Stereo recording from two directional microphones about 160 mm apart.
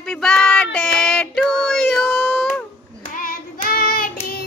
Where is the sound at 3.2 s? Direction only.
60° left (ahead or behind).